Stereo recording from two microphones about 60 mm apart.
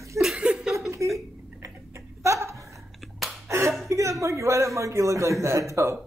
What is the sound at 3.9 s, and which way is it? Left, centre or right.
A man's voice, right.